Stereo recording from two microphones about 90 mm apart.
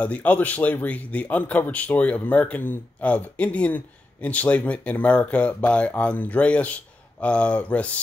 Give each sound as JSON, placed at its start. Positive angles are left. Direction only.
{"t": 0.0, "sound": "speech", "side_deg": 20}